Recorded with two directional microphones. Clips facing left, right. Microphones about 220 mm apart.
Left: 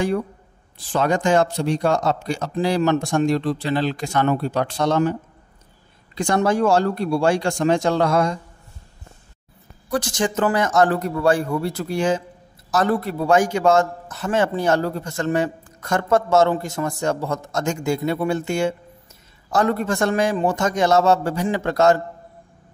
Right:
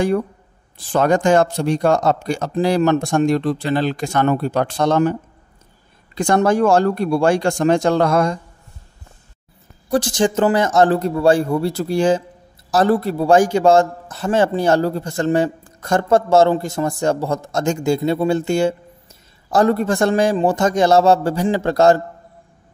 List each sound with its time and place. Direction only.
0.9 s speech: 45° right (ahead or behind)
6.1 s speech: 50° right (ahead or behind)
9.8 s a man's voice: 30° right (ahead or behind)